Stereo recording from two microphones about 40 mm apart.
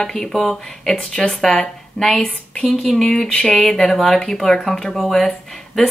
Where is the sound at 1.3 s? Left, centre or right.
Centre.